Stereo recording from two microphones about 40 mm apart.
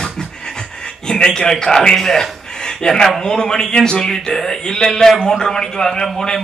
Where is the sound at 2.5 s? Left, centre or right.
Centre.